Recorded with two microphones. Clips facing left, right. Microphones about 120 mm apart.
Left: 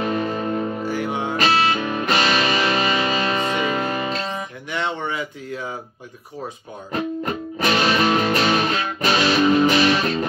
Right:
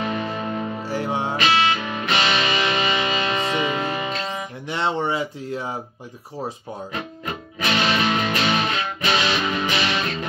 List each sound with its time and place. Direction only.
0.0 s music: 40° left (ahead or behind)
0.8 s music: 30° right (ahead or behind)
1.3 s music: 40° left (ahead or behind)
4.6 s a sound: 30° right (ahead or behind)
6.9 s music: 40° left (ahead or behind)